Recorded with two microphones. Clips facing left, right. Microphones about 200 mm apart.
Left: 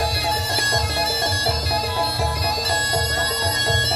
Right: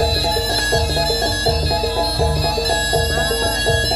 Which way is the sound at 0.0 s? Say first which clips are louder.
Right 6 dB; 30° right (ahead or behind).